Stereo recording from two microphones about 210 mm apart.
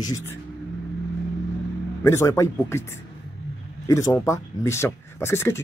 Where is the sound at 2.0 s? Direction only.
15° left (ahead or behind).